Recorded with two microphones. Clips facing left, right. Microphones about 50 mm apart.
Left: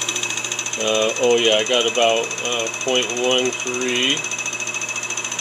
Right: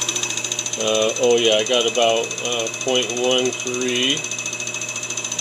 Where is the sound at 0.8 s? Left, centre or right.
Left.